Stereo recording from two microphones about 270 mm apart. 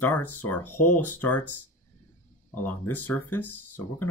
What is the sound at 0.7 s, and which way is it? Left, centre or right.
Speech, left.